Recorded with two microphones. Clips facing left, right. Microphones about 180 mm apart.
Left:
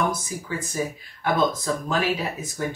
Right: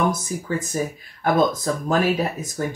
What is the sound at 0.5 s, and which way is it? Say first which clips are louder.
Speech: right 3 dB; 45° right (ahead or behind).